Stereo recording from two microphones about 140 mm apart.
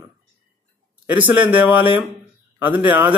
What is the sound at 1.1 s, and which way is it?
A man's voice, 15° right (ahead or behind).